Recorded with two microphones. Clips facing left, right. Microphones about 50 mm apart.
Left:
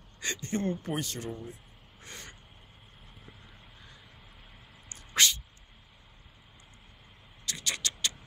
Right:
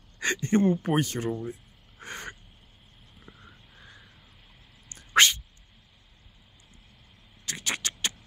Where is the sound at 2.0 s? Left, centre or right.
Right.